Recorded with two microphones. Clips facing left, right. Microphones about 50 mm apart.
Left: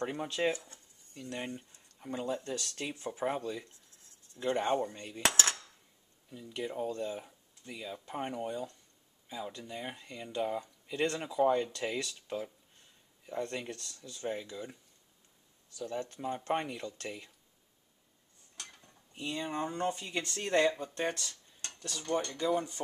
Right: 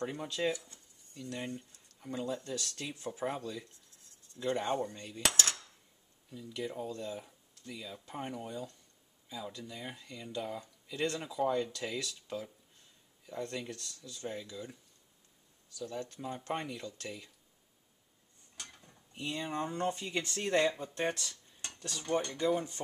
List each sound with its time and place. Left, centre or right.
0.0 s speech: left
5.2 s cutlery: left
6.3 s speech: centre
15.8 s speech: centre
18.6 s speech: centre
21.7 s cutlery: centre
22.4 s speech: centre